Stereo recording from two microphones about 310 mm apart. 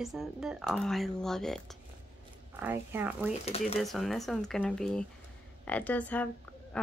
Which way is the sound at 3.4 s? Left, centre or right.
Centre.